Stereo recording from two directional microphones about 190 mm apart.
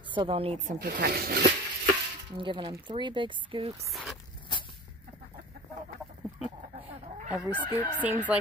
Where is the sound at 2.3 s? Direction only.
25° right (ahead or behind).